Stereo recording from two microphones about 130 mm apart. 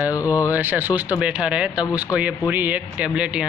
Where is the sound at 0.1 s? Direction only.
25° left (ahead or behind).